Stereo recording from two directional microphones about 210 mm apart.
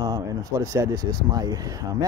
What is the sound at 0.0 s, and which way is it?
Speech, 20° right (ahead or behind).